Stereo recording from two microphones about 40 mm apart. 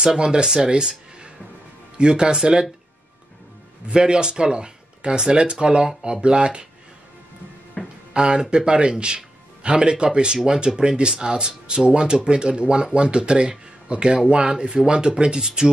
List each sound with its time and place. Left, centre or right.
0.0 s a man's voice: centre
3.9 s a man's voice: right
7.8 s music: left
8.1 s a man's voice: right